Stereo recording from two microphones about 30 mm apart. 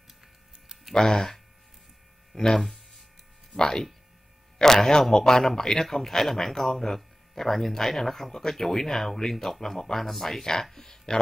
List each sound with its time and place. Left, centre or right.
0.9 s speech: left
10.4 s speech: centre